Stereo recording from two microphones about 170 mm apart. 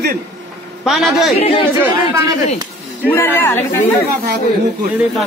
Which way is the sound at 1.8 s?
15° right (ahead or behind).